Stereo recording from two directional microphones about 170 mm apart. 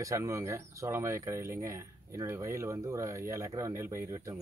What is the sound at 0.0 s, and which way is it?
Speech, 20° right (ahead or behind).